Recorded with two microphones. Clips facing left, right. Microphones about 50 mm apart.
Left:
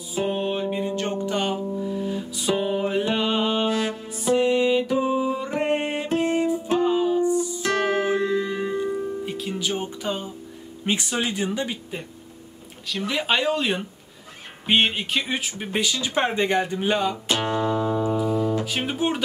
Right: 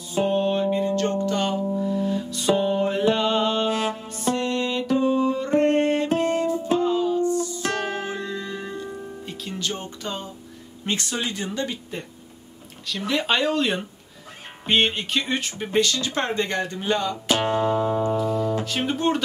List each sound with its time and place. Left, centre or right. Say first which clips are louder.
0.1 s music: right 3 dB; centre
3.7 s music: even; right
4.1 s music: left 8 dB; centre
7.7 s music: left 6 dB; left
9.2 s music: left 3 dB; centre
10.9 s speech: left 2 dB; centre
17.5 s music: even; right
18.0 s music: even; centre
18.7 s speech: right 2 dB; centre